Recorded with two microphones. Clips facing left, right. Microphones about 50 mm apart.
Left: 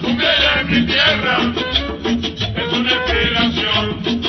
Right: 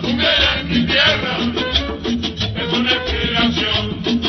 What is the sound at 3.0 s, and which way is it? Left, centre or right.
Music, left.